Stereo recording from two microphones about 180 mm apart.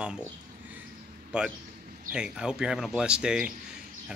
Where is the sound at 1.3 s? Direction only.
5° right (ahead or behind).